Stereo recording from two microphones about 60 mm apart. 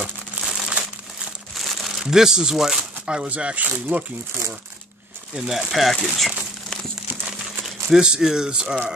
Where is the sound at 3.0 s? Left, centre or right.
Centre.